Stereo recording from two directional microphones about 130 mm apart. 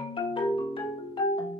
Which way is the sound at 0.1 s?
40° left (ahead or behind).